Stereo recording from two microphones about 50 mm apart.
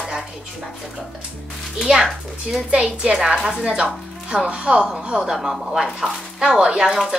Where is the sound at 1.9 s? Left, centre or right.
Centre.